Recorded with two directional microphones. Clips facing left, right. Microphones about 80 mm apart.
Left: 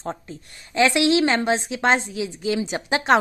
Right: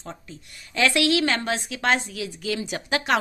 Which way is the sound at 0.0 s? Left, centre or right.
Left.